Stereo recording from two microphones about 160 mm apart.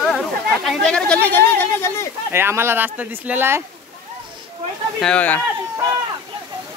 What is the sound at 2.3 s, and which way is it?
Speech, 15° right (ahead or behind).